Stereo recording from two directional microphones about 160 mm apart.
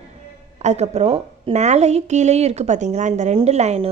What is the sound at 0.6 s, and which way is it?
A woman's voice, 45° right (ahead or behind).